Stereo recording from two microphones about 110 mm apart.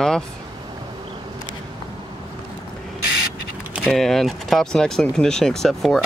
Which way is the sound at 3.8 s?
5° left (ahead or behind).